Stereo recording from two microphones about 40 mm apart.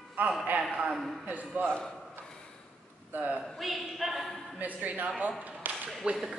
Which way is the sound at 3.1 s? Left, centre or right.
Right.